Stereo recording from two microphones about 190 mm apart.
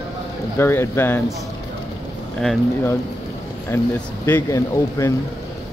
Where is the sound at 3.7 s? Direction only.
10° left (ahead or behind).